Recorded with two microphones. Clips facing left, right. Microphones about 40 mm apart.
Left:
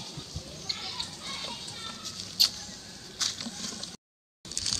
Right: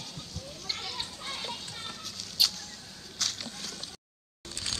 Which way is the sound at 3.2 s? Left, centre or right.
Centre.